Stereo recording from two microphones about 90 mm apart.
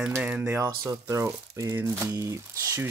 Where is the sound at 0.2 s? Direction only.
20° right (ahead or behind).